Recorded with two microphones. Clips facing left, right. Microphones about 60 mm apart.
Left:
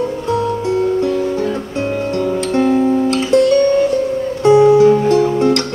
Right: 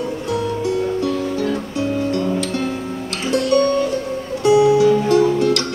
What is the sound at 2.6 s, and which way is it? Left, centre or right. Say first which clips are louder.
Music: left 11 dB; left.